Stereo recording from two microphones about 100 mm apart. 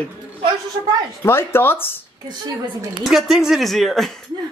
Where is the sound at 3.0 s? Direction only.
5° right (ahead or behind).